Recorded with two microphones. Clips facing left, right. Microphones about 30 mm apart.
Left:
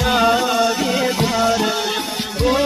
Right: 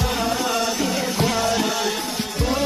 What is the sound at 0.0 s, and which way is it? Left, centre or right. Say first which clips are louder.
Music: left 7 dB; left.